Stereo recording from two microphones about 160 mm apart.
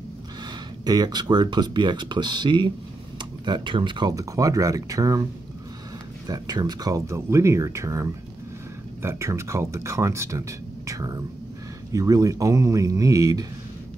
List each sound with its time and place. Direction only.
0.8 s speech: 25° right (ahead or behind)
6.2 s speech: 25° right (ahead or behind)